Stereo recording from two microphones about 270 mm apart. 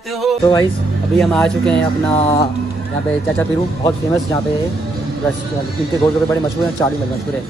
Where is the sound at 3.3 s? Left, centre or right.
Centre.